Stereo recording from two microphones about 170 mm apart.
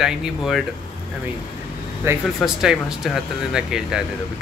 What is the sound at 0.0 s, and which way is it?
Speech, centre (ahead or behind).